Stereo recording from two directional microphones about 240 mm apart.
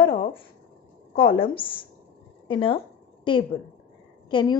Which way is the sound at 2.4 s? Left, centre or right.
Left.